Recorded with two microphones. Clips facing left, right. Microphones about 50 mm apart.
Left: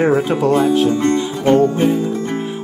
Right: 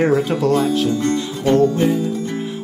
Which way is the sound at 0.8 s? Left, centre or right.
Left.